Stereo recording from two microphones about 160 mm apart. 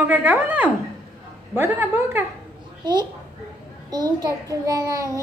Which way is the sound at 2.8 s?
30° right (ahead or behind).